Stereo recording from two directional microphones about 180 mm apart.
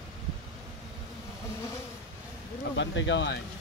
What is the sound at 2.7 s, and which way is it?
Speech, 85° left.